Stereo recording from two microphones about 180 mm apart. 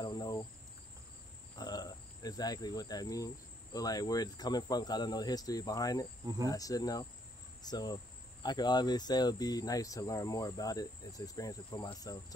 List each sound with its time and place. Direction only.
0.0 s cricket: 20° left (ahead or behind)
1.6 s speech: 20° left (ahead or behind)
6.2 s speech: 20° right (ahead or behind)
6.5 s speech: 20° left (ahead or behind)